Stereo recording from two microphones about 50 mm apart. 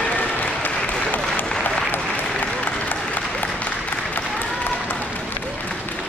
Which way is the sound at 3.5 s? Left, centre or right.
Left.